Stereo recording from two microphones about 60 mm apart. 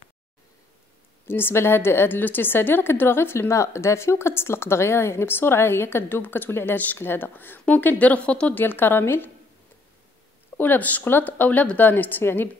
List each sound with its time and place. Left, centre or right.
1.2 s a woman's voice: left; by 8.5 s centre
8.5 s a woman's voice: left
10.6 s a woman's voice: left